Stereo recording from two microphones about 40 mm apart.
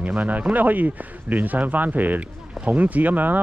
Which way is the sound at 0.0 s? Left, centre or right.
Right.